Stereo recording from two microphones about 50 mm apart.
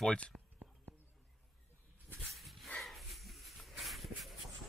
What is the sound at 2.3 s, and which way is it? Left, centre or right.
Dog, centre.